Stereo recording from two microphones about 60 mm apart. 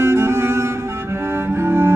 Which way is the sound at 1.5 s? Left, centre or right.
Right.